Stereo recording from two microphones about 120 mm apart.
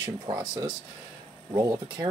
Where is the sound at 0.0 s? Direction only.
35° right (ahead or behind).